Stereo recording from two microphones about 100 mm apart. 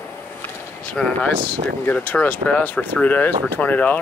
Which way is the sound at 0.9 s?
10° left (ahead or behind).